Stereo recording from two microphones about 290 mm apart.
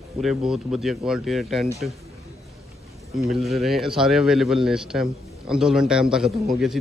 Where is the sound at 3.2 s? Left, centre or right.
Centre.